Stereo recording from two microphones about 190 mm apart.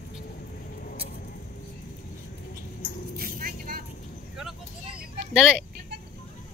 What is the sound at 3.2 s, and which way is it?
Music, 50° right (ahead or behind).